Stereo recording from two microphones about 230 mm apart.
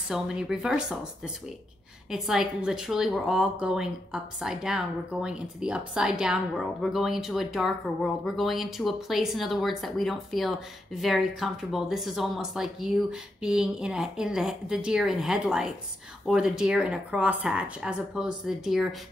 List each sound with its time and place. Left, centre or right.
0.1 s a woman's voice: centre